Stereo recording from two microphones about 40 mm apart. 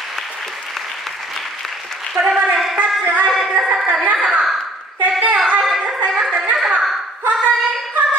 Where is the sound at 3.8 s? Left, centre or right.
Right.